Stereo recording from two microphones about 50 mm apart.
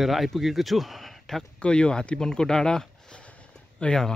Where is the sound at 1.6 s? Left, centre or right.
Centre.